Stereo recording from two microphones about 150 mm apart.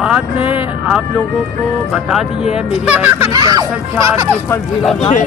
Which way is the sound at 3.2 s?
25° right (ahead or behind).